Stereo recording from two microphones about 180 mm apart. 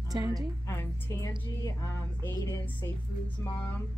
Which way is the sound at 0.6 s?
15° left (ahead or behind).